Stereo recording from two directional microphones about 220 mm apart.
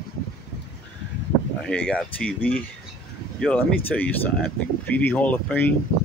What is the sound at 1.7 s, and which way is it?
Speech, 5° left (ahead or behind).